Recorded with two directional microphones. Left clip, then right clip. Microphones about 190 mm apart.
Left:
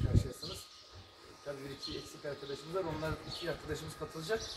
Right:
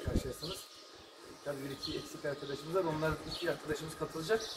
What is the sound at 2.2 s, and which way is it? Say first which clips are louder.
Speech: right 3 dB; 20° left (ahead or behind).